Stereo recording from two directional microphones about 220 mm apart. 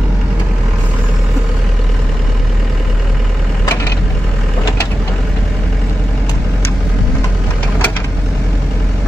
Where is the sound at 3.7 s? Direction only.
10° left (ahead or behind).